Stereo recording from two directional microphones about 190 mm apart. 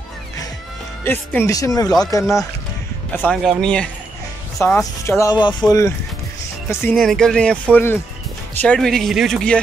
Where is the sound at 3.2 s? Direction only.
Centre (ahead or behind).